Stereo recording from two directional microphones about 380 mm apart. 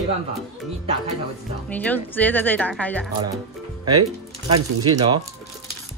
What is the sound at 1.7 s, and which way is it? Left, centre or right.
Speech, centre.